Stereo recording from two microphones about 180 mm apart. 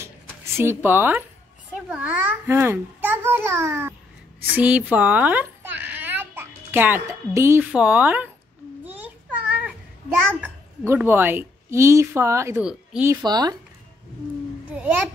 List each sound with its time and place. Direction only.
0.6 s a child's voice: 10° right (ahead or behind)
9.6 s a child's voice: 10° right (ahead or behind)
13.1 s speech: 20° right (ahead or behind)
14.7 s a child's voice: 10° right (ahead or behind)